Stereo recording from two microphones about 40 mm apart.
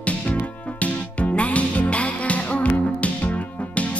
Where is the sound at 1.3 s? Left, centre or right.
Left.